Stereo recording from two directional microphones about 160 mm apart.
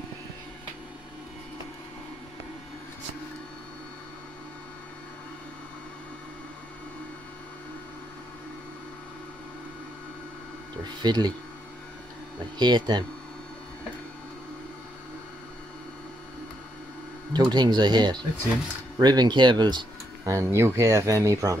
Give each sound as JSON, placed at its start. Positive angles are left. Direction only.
{"t": 10.8, "sound": "speech", "side_deg": -25}
{"t": 12.5, "sound": "speech", "side_deg": -25}
{"t": 17.3, "sound": "speech", "side_deg": -25}
{"t": 20.3, "sound": "speech", "side_deg": -15}